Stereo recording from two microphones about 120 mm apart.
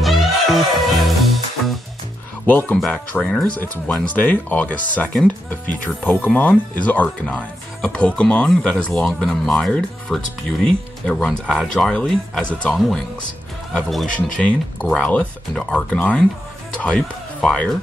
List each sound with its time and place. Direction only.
0.0 s music: centre (ahead or behind)
2.4 s speech: 15° left (ahead or behind)
13.7 s speech: centre (ahead or behind)